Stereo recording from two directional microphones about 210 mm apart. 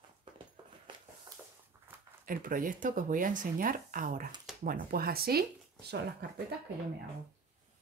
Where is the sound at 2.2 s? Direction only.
40° right (ahead or behind).